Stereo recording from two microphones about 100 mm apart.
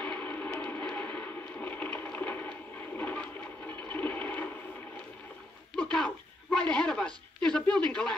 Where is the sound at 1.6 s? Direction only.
15° left (ahead or behind).